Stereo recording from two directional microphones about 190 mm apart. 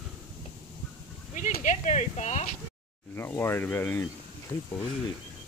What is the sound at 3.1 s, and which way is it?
Speech, 10° left (ahead or behind).